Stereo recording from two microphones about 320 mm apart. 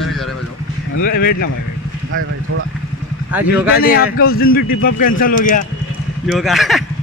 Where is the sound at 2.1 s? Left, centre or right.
Right.